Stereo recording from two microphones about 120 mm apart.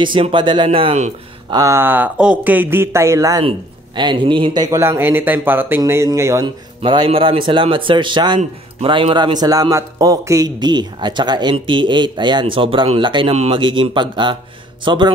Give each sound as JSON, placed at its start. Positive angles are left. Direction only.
{"t": 0.0, "sound": "speech", "side_deg": -45}
{"t": 1.5, "sound": "speech", "side_deg": -25}
{"t": 3.4, "sound": "a man's voice", "side_deg": -40}
{"t": 4.8, "sound": "speech", "side_deg": -20}
{"t": 5.8, "sound": "speech", "side_deg": -25}
{"t": 6.4, "sound": "a man's voice", "side_deg": -45}